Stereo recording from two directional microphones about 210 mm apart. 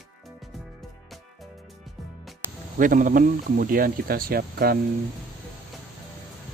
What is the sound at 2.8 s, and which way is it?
Speech, 40° right (ahead or behind).